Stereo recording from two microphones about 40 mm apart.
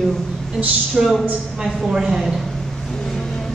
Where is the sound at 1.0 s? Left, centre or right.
Centre.